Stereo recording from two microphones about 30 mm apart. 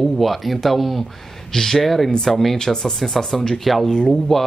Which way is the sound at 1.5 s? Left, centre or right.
Centre.